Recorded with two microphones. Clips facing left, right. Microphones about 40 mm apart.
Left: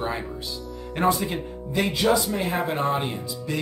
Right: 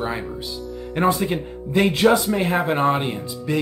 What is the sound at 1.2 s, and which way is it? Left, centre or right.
Speech, right.